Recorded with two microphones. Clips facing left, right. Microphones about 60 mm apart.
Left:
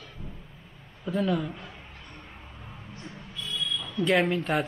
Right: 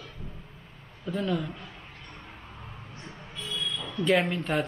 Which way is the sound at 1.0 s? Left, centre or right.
Centre.